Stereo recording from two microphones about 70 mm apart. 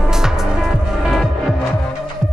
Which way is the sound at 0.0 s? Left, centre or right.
Centre.